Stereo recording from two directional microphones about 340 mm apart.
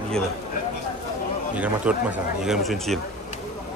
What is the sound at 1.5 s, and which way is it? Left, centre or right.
Speech, centre.